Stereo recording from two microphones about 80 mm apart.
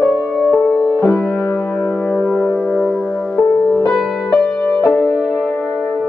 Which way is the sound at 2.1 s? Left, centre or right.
Centre.